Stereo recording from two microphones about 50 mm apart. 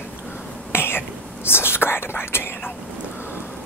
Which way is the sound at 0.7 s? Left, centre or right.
Left.